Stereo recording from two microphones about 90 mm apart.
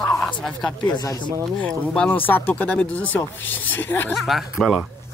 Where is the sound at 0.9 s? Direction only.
50° left (ahead or behind).